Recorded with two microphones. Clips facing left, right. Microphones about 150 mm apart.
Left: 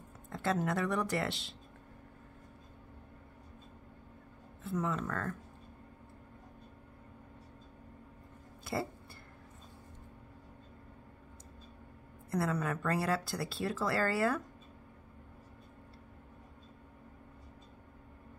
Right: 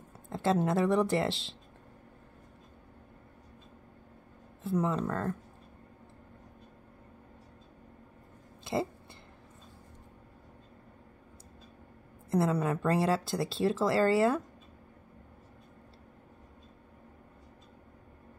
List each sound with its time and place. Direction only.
0.3 s speech: 30° right (ahead or behind)
4.6 s speech: 30° right (ahead or behind)
12.3 s speech: 25° right (ahead or behind)